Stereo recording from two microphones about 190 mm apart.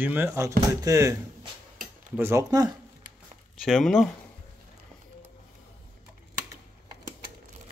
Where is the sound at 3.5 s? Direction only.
Centre (ahead or behind).